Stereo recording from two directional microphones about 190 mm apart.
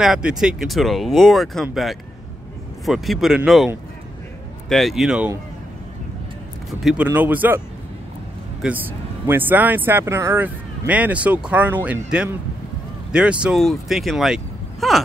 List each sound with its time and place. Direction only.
0.0 s speech: 5° right (ahead or behind)
6.7 s speech: centre (ahead or behind)
8.6 s speech: 5° right (ahead or behind)